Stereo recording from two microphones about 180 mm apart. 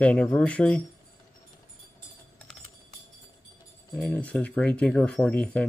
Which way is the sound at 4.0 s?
10° left (ahead or behind).